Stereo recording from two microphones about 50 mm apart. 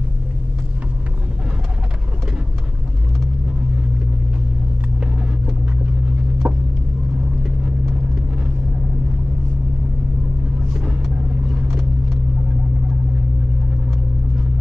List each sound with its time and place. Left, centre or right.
6.4 s vehicle: right